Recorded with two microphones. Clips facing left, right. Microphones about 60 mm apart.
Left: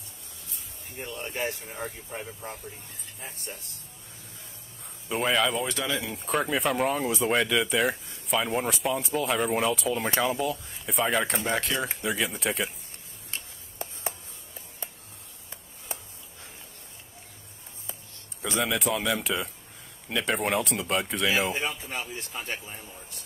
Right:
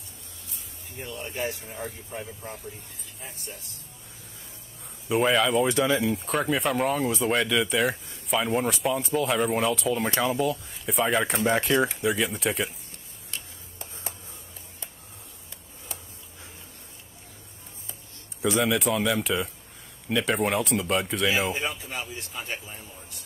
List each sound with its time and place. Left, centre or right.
1.2 s speech: left
5.0 s speech: centre
5.7 s speech: right
6.0 s speech: centre
11.6 s speech: right
12.0 s speech: centre
13.3 s a sound: left
15.9 s a sound: left
18.4 s speech: centre